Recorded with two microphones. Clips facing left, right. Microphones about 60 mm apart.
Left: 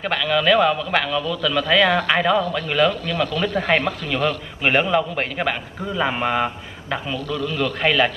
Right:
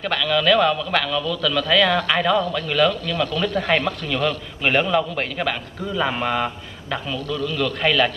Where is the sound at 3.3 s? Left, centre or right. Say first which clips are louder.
Left 1 dB; left.